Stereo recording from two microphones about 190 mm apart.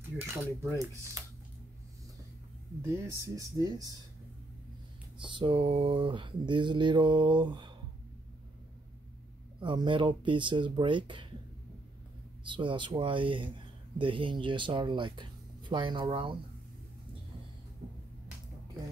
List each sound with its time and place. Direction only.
0.3 s speech: 15° right (ahead or behind)
2.8 s speech: 15° right (ahead or behind)
5.2 s speech: 25° right (ahead or behind)
9.6 s speech: 25° right (ahead or behind)
12.4 s speech: 25° right (ahead or behind)